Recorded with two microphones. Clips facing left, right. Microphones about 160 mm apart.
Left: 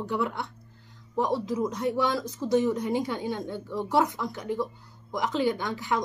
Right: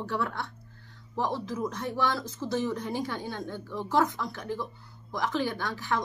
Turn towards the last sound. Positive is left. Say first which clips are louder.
# left 2 dB
turn(degrees=15)  # may be behind; listen again after turning